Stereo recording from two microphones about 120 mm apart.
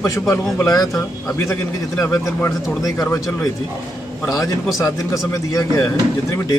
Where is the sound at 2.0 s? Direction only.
25° left (ahead or behind).